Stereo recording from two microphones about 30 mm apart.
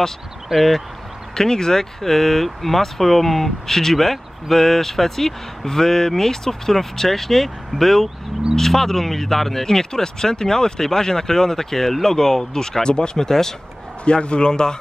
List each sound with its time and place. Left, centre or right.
0.6 s speech: centre
1.3 s speech: centre
14.0 s a man's voice: left